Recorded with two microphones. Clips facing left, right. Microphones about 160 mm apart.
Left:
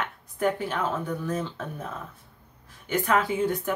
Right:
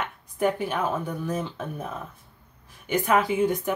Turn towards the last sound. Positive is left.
turn(degrees=-15)  # may be behind; listen again after turning